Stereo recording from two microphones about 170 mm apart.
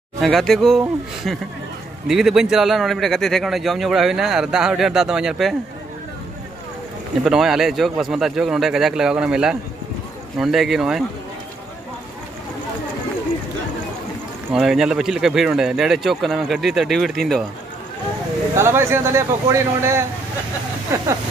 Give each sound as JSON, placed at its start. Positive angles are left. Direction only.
{"t": 0.2, "sound": "speech", "side_deg": 0}
{"t": 7.2, "sound": "speech", "side_deg": 0}
{"t": 14.5, "sound": "speech", "side_deg": -5}
{"t": 18.6, "sound": "speech", "side_deg": -15}